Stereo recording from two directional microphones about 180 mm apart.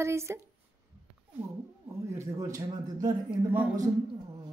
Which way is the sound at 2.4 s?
20° right (ahead or behind).